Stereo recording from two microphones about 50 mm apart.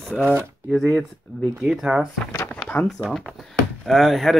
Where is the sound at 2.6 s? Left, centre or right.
Centre.